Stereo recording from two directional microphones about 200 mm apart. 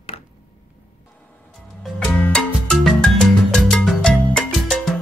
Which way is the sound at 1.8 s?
5° left (ahead or behind).